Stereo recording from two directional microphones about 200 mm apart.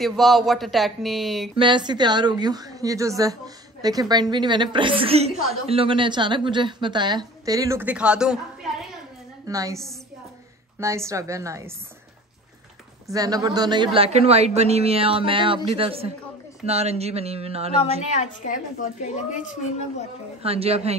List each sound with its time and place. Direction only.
0.0 s speech: centre (ahead or behind)
1.6 s a woman's voice: 20° right (ahead or behind); by 8.7 s 5° right (ahead or behind)
9.5 s a woman's voice: 15° right (ahead or behind)
10.8 s a woman's voice: 15° right (ahead or behind)
13.0 s a woman's voice: 15° right (ahead or behind)
18.1 s a woman's voice: 35° left (ahead or behind)
20.4 s speech: 30° right (ahead or behind)